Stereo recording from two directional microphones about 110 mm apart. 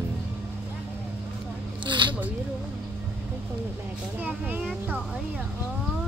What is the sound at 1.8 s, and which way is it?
Zipper, 45° right (ahead or behind).